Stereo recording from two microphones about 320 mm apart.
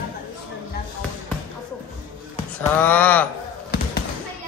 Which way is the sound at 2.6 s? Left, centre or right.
Centre.